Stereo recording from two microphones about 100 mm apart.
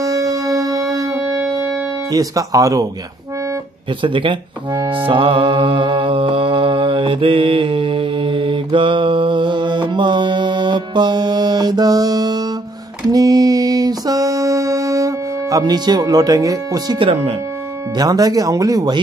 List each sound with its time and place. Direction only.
0.0 s music: 35° right (ahead or behind)
4.0 s speech: 55° right (ahead or behind)
13.1 s music: 40° right (ahead or behind)
17.0 s speech: 85° right
17.9 s speech: 40° right (ahead or behind)